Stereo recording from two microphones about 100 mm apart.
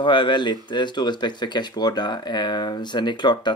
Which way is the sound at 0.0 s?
50° left (ahead or behind).